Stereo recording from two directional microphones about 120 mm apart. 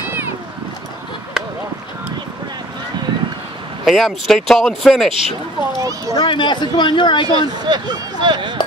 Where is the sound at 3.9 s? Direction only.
Centre (ahead or behind).